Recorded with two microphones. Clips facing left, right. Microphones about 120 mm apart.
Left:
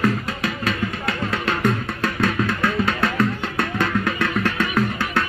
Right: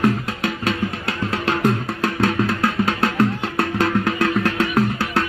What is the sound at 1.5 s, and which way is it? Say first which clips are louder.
Music: right 3 dB; 25° right (ahead or behind).